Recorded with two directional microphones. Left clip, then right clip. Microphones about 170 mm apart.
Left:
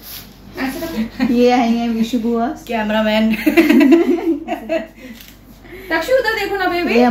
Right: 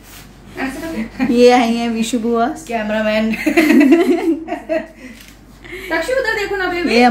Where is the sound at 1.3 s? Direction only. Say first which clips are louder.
Right 4 dB; 45° right (ahead or behind).